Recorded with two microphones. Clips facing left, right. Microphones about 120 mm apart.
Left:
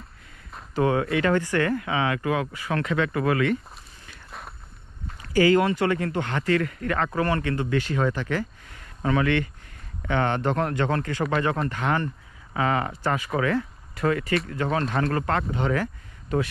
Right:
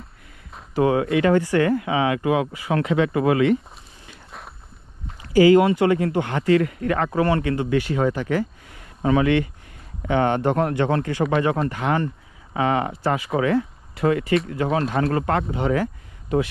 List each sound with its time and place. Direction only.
0.7 s speech: 25° right (ahead or behind)
4.3 s walk: centre (ahead or behind)
5.2 s speech: 20° right (ahead or behind)